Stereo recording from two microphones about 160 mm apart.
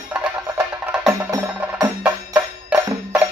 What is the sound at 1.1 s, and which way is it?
Music, 20° right (ahead or behind).